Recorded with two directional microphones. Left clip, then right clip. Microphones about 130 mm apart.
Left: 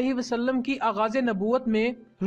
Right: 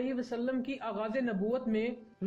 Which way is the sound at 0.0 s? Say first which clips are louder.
Left 8 dB; 40° left (ahead or behind).